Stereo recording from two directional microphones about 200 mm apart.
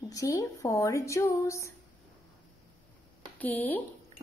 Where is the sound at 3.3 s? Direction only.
10° left (ahead or behind).